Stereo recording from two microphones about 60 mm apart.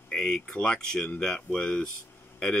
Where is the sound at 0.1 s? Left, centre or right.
Centre.